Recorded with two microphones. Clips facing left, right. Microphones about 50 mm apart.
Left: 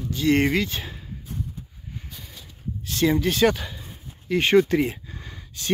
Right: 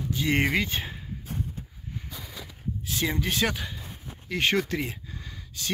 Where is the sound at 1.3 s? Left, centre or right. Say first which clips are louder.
Even; right.